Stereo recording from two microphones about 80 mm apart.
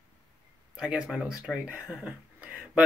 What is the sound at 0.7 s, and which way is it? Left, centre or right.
Speech, centre.